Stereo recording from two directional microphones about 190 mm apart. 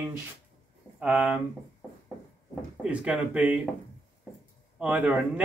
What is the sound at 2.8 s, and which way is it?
Speech, 5° right (ahead or behind).